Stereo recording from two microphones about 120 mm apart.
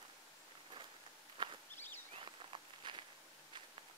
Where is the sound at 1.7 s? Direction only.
15° left (ahead or behind).